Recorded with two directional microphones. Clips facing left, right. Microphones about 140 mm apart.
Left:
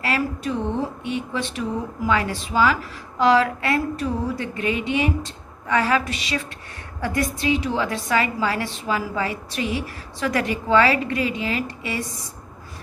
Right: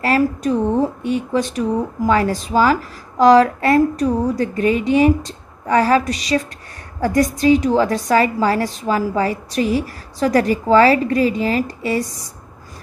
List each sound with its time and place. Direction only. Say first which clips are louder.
0.0 s speech: right 7 dB; 40° right (ahead or behind)